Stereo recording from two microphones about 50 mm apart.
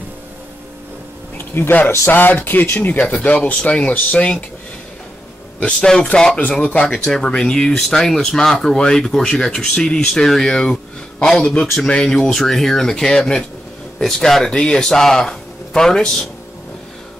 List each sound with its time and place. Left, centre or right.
1.4 s speech: left
3.2 s speech: left
5.6 s speech: centre